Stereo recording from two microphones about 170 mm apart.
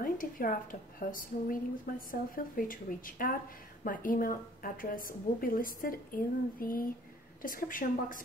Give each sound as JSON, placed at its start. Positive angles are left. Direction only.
{"t": 0.0, "sound": "a woman's voice", "side_deg": 55}